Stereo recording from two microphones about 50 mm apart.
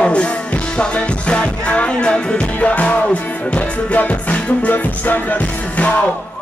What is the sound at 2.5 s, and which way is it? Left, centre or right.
Music, left.